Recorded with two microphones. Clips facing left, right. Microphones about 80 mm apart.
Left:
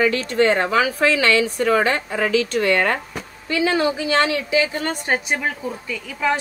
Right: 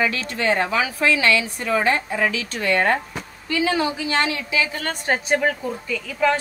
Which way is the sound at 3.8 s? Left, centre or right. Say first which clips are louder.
Left 3 dB; left.